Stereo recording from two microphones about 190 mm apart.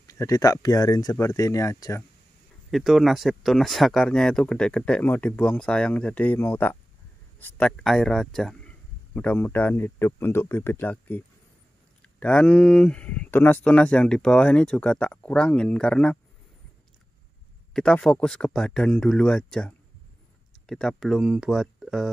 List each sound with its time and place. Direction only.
0.0 s a man's voice: 15° left (ahead or behind)
2.7 s a man's voice: centre (ahead or behind)
17.7 s speech: 5° left (ahead or behind)